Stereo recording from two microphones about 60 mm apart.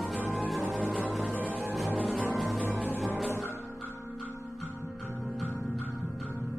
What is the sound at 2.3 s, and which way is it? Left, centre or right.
Music, centre.